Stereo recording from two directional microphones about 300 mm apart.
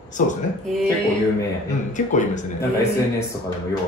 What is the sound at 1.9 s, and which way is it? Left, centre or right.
Speech, left.